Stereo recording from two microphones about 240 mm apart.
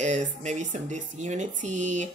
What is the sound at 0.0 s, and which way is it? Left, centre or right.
Speech, right.